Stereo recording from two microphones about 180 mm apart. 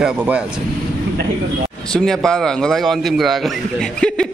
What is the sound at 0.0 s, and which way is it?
Speech, 5° right (ahead or behind).